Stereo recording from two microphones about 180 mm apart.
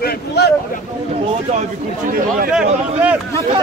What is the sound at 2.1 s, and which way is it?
Speech, 50° right (ahead or behind).